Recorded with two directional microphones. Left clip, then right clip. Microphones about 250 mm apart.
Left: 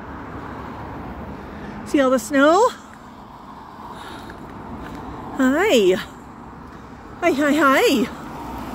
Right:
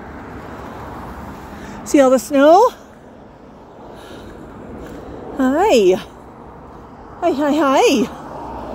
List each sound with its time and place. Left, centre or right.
1.9 s a woman's voice: centre
5.4 s speech: centre
7.2 s a woman's voice: centre